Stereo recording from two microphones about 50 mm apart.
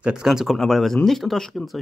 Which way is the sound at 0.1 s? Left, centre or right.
Centre.